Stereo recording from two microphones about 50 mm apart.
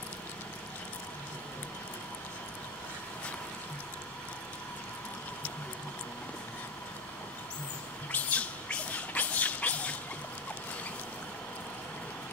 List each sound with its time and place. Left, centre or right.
8.1 s squawk: left